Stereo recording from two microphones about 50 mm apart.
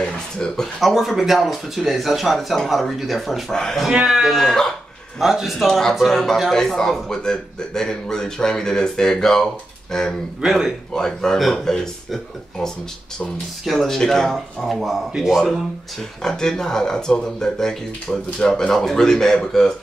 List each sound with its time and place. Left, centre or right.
0.0 s speech: centre
0.7 s speech: centre
3.5 s a man's voice: centre
5.7 s speech: centre
16.2 s speech: centre